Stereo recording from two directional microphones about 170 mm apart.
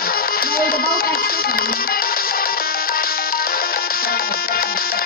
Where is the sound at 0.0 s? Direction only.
60° left (ahead or behind).